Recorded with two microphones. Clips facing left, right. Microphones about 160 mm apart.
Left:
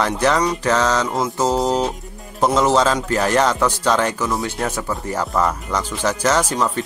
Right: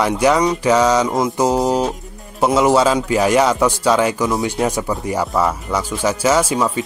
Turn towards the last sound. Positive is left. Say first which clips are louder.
# right 3 dB
turn(degrees=-10)  # may be behind; listen again after turning